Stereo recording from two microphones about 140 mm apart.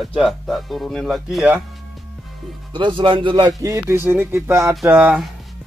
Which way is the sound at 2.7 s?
35° right (ahead or behind).